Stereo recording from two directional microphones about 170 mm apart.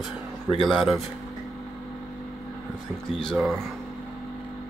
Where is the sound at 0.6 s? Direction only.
Centre (ahead or behind).